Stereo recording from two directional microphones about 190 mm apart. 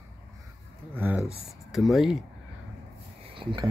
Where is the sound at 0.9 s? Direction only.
10° right (ahead or behind).